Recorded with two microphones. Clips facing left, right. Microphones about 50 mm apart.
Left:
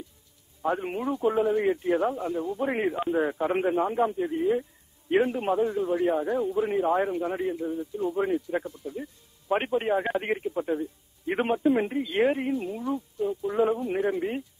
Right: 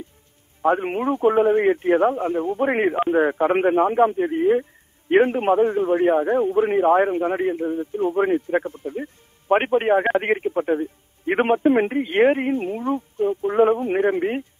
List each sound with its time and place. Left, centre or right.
0.6 s a man's voice: right